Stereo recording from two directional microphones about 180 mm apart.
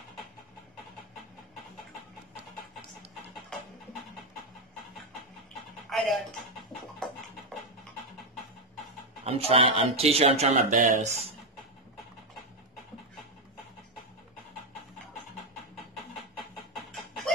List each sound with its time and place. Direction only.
5.9 s a sound: centre (ahead or behind)
9.2 s speech: 35° right (ahead or behind)
16.7 s chicken: centre (ahead or behind)